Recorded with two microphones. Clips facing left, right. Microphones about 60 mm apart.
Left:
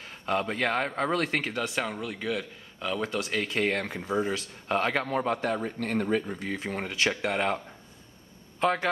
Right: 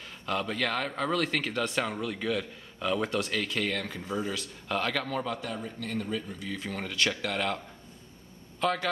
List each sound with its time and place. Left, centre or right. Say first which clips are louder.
0.2 s a man's voice: left 3 dB; left
1.5 s a man's voice: even; centre
3.5 s a man's voice: left 4 dB; left
5.2 s speech: left 6 dB; left
6.6 s a man's voice: left 1 dB; left
8.5 s speech: left 3 dB; left